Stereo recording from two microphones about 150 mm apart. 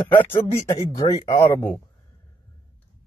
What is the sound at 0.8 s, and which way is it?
Speech, 25° left (ahead or behind).